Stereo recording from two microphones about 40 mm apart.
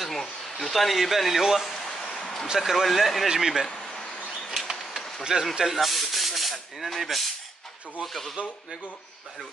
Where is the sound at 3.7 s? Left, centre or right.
Left.